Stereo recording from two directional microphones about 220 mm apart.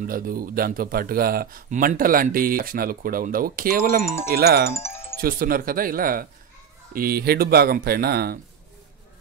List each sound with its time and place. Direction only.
0.0 s speech: 40° right (ahead or behind)
4.0 s speech: 10° left (ahead or behind)
4.4 s speech: 45° right (ahead or behind)
4.7 s music: 10° left (ahead or behind)
5.2 s speech: 40° right (ahead or behind)